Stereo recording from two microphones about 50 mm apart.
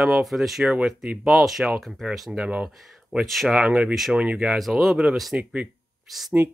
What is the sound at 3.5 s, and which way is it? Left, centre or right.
Speech, centre.